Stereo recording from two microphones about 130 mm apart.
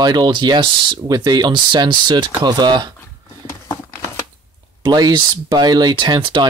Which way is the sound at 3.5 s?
25° left (ahead or behind).